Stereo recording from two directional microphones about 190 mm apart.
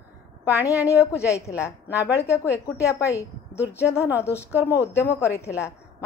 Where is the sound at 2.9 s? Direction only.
15° left (ahead or behind).